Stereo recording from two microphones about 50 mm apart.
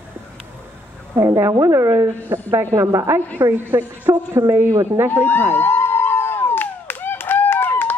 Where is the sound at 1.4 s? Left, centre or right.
Right.